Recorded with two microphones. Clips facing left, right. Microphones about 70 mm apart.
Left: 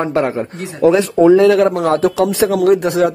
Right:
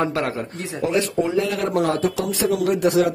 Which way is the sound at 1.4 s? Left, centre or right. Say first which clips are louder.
Left 13 dB; left.